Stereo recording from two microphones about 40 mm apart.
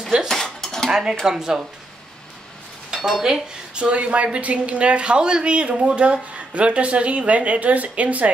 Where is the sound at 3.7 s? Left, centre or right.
Right.